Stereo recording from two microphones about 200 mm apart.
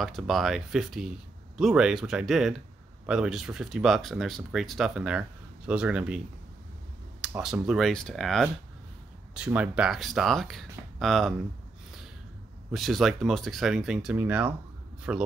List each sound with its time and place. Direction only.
0.0 s speech: centre (ahead or behind)
12.7 s speech: centre (ahead or behind)